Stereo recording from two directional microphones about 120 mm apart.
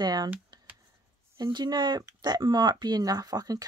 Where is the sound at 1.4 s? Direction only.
35° right (ahead or behind).